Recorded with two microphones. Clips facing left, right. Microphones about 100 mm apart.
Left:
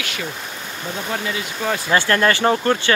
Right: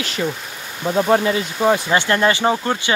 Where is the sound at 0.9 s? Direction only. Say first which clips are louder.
Right 10 dB; 40° right (ahead or behind).